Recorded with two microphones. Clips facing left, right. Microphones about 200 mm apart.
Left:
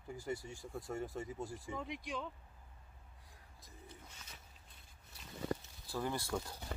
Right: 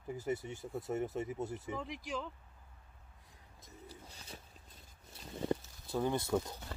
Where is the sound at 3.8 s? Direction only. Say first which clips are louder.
Right 5 dB; 35° right (ahead or behind).